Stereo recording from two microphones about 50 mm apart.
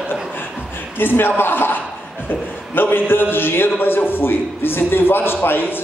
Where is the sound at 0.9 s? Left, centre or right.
Left.